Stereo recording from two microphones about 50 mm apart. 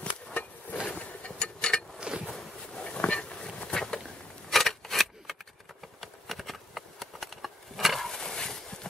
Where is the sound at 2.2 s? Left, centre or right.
Centre.